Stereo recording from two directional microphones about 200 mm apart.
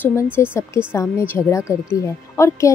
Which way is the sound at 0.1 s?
10° left (ahead or behind).